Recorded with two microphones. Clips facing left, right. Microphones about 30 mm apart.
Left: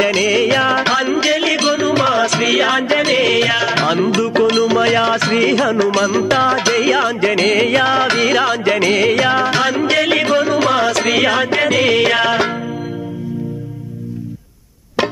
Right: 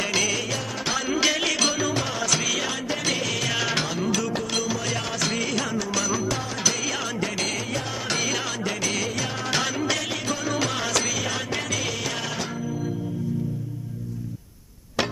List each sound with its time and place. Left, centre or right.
0.1 s music: left
0.4 s music: left
1.0 s music: left
1.9 s music: left
3.5 s music: left
3.8 s music: left
6.6 s music: left
7.4 s music: left
9.5 s music: left
10.5 s music: left
11.1 s music: left
11.3 s music: left